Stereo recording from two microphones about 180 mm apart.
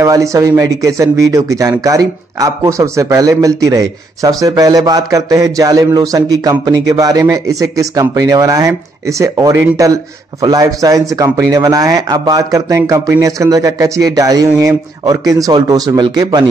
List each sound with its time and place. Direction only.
0.0 s speech: 15° right (ahead or behind)